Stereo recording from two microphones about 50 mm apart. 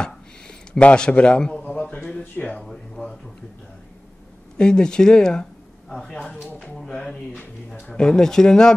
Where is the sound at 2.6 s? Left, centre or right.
Centre.